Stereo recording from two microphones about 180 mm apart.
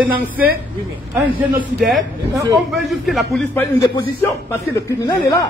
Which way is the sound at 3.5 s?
20° left (ahead or behind).